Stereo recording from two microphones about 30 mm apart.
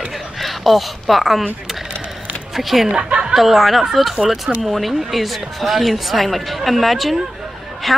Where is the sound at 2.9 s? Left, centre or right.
Right.